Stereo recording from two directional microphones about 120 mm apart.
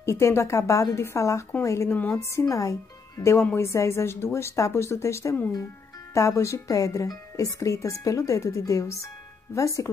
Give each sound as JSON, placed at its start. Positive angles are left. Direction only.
{"t": 0.0, "sound": "speech", "side_deg": 20}